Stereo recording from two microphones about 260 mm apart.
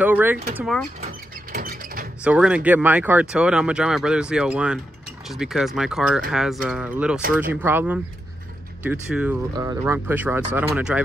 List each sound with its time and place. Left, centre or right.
0.0 s speech: centre
1.0 s a sound: right
2.2 s speech: centre
9.1 s speech: centre